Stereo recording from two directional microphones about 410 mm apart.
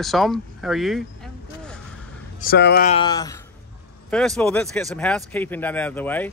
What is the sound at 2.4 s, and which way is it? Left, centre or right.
Speech, left.